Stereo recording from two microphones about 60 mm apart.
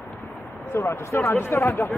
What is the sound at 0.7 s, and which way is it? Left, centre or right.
Speech, left.